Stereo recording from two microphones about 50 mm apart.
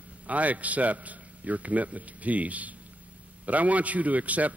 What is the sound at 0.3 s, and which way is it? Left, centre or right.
Speech, right.